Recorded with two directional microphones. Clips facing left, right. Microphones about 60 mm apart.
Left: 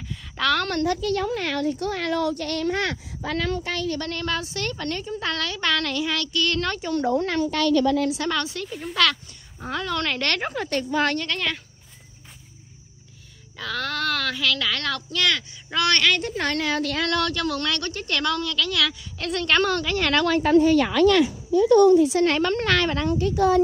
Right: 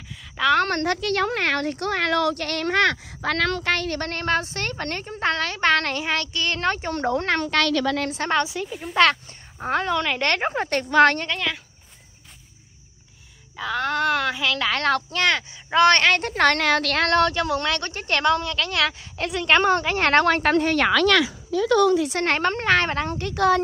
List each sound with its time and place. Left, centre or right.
0.6 s a woman's voice: right
8.0 s a child's voice: right
8.5 s speech: centre
8.9 s a child's voice: right
9.9 s speech: centre
10.2 s a woman's voice: right
11.3 s speech: centre
13.6 s a child's voice: centre; by 16.2 s right
16.2 s a woman's voice: right
17.1 s a child's voice: right
20.1 s a woman's voice: right
22.1 s a woman's voice: right
23.1 s a woman's voice: right